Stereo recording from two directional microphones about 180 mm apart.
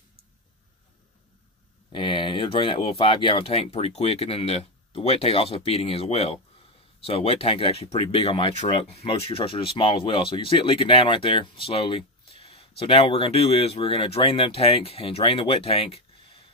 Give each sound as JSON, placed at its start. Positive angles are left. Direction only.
{"t": 1.9, "sound": "speech", "side_deg": 30}